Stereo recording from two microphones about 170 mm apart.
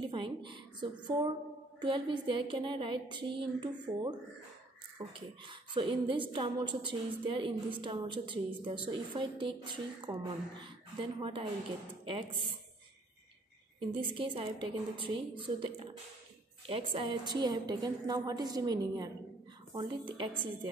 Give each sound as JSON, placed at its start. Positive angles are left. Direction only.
{"t": 0.1, "sound": "a woman's voice", "side_deg": -30}
{"t": 13.7, "sound": "a woman's voice", "side_deg": -30}